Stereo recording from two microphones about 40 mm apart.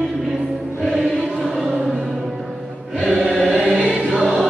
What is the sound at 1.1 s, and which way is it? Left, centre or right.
Choir, centre.